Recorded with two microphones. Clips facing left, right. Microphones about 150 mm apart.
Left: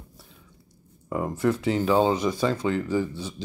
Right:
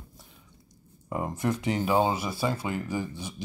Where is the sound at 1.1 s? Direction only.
20° right (ahead or behind).